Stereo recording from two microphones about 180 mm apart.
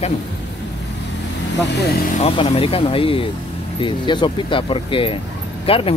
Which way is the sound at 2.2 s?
30° left (ahead or behind).